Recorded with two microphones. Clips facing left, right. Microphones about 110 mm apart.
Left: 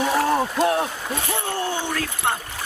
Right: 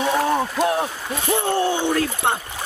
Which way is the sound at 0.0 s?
Centre (ahead or behind).